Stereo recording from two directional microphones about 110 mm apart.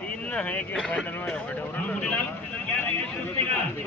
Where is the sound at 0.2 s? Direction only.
10° left (ahead or behind).